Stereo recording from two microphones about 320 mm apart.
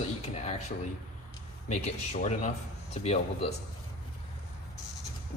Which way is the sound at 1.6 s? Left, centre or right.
Left.